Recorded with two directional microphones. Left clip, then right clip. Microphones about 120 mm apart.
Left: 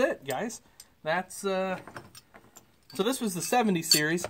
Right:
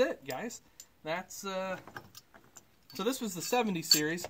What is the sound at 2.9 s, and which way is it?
Speech, 20° left (ahead or behind).